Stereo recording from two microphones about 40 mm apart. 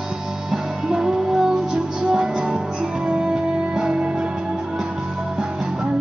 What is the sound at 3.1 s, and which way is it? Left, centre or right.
Music, centre.